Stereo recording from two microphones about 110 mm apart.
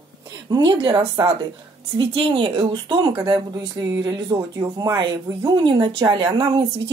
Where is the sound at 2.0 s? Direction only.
50° right (ahead or behind).